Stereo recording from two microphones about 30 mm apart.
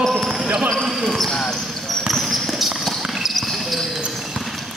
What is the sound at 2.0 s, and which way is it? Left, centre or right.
Basketball bounce, centre.